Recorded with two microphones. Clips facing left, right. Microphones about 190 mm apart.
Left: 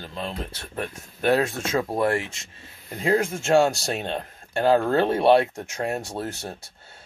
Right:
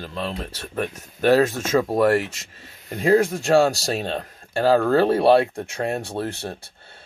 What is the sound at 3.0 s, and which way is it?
Speech, 35° right (ahead or behind).